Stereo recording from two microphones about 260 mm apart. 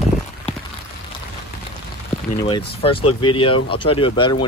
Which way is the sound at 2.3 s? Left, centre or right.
Centre.